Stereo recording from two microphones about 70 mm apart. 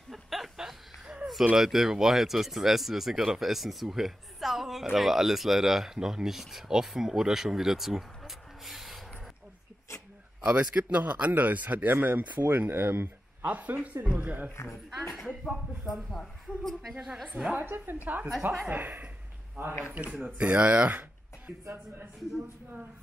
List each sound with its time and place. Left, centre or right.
0.1 s a sound: centre
1.6 s speech: centre
10.4 s speech: centre
14.5 s speech: left
15.1 s speech: centre
16.9 s a woman's voice: centre
17.6 s a woman's voice: right